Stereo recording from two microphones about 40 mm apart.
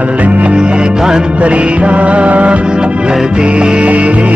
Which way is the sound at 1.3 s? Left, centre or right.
Right.